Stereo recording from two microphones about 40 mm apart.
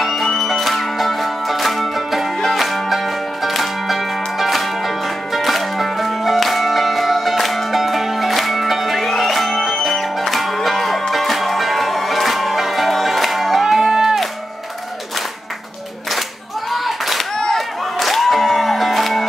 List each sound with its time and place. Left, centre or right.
0.0 s music: centre
16.7 s a sound: centre
17.6 s music: centre